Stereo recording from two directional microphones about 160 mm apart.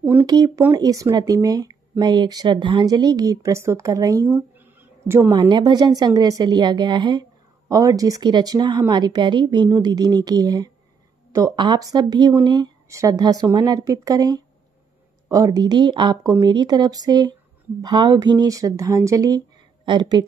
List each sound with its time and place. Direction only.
0.0 s a woman's voice: 10° right (ahead or behind)
4.3 s a sound: 10° right (ahead or behind)
5.5 s a woman's voice: 25° right (ahead or behind)